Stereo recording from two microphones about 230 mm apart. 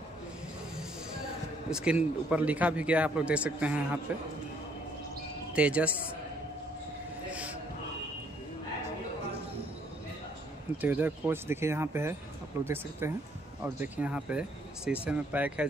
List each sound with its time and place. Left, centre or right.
1.7 s a man's voice: centre
5.5 s speech: centre
10.8 s a man's voice: centre